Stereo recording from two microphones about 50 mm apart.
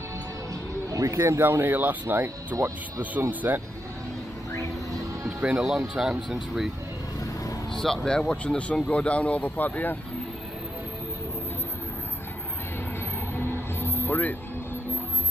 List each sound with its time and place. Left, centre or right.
1.0 s speech: right
1.4 s speech: right
2.2 s speech: right
3.2 s speech: right
5.4 s speech: centre
7.7 s speech: centre; by 9.9 s left
13.7 s vehicle: left